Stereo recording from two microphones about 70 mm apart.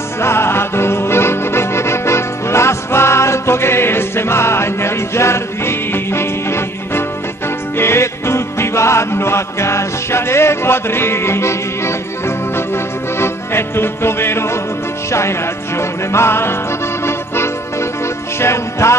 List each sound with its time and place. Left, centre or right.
0.2 s music: left